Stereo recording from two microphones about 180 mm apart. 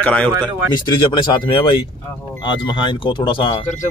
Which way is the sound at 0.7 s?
25° left (ahead or behind).